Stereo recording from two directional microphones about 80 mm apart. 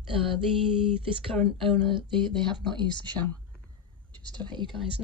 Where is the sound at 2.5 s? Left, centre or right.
Right.